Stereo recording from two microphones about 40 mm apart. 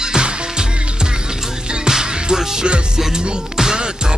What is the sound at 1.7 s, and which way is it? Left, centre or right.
Music, centre.